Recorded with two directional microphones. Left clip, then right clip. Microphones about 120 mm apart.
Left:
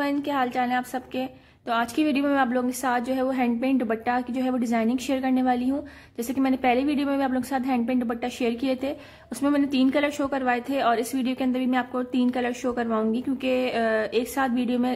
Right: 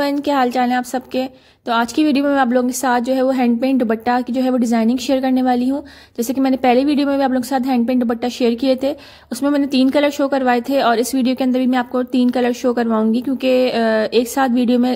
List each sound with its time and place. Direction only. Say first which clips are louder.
0.0 s a woman's voice: right 9 dB; 55° right (ahead or behind)